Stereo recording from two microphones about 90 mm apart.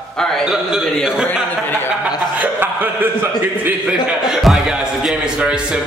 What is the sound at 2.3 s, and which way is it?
A man's voice, 20° right (ahead or behind).